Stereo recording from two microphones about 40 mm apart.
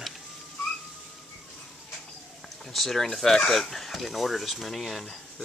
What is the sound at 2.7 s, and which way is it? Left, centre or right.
Speech, centre.